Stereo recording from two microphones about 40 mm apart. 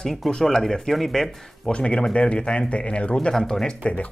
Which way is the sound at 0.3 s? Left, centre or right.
Centre.